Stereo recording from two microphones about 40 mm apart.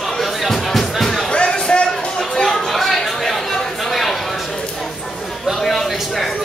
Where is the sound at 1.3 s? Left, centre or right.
Left.